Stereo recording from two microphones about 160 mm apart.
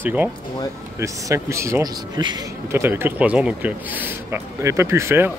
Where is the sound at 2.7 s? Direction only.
15° right (ahead or behind).